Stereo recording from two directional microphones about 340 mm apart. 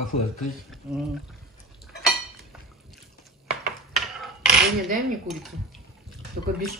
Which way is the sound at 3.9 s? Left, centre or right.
Centre.